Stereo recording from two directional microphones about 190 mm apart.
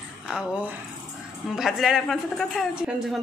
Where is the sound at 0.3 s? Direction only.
5° right (ahead or behind).